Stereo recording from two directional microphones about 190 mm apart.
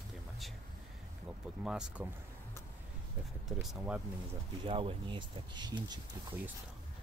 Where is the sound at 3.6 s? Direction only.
5° right (ahead or behind).